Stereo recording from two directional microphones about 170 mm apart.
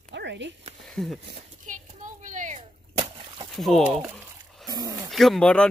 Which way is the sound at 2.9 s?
35° right (ahead or behind).